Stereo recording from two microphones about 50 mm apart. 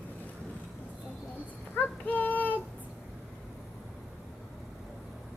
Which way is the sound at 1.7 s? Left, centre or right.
Left.